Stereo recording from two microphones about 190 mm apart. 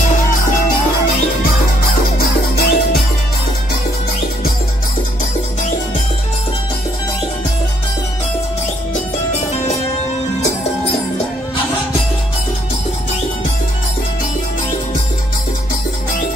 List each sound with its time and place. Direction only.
2.1 s music: 55° left (ahead or behind)